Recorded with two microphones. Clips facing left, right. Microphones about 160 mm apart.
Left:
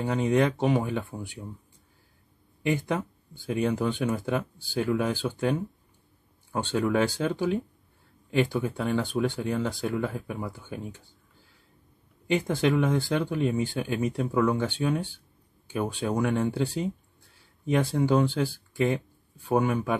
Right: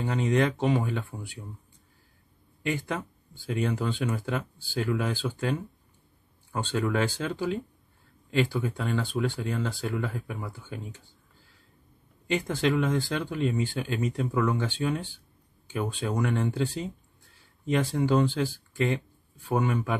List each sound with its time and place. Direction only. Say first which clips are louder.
0.0 s speech: left 2 dB; 10° left (ahead or behind)
2.6 s speech: left 3 dB; 15° left (ahead or behind)
6.5 s speech: left 2 dB; 10° left (ahead or behind)
12.3 s speech: left 2 dB; 10° left (ahead or behind)